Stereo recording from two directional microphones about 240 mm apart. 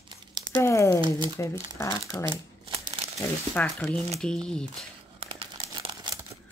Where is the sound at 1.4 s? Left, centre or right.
Centre.